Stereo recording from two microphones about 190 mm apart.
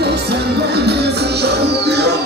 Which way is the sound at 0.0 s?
60° right (ahead or behind).